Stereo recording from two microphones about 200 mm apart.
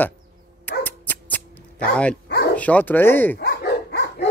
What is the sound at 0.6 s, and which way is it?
Dog, 10° left (ahead or behind).